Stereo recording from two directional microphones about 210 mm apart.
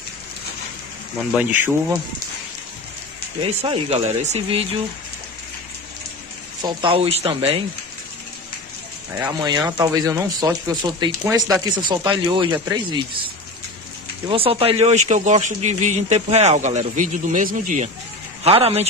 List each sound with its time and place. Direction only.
1.3 s speech: 5° right (ahead or behind)
3.4 s speech: 25° right (ahead or behind)
6.6 s speech: 25° right (ahead or behind)
9.1 s speech: 15° right (ahead or behind); by 18.9 s 30° right (ahead or behind)